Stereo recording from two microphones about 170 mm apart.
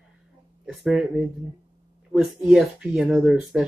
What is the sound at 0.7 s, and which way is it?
Speech, centre (ahead or behind).